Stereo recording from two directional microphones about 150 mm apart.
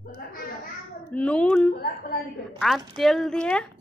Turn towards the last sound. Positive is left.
turn(degrees=5)  # may be behind; listen again after turning